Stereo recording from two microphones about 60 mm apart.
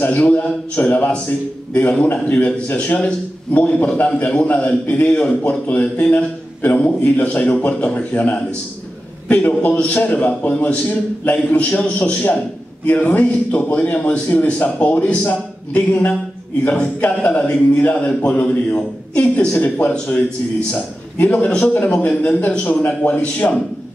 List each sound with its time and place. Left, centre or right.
0.0 s a man's voice: left
22.1 s a man's voice: centre